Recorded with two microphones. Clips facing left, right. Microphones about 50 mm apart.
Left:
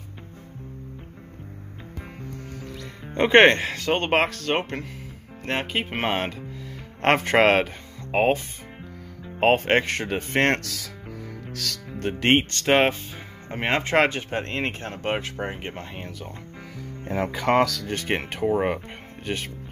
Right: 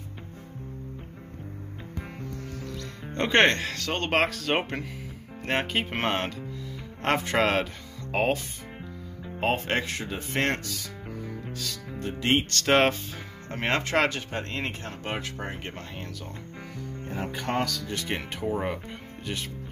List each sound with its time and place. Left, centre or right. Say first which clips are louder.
2.6 s music: even; centre
3.3 s speech: left 6 dB; left
4.2 s speech: left 2 dB; centre; by 6.7 s left
7.0 s speech: left 6 dB; left
8.1 s speech: left 5 dB; left
9.4 s speech: left 7 dB; left
11.5 s speech: left 3 dB; left
12.0 s speech: left 5 dB; left
17.5 s speech: left 9 dB; left
17.8 s speech: left 5 dB; left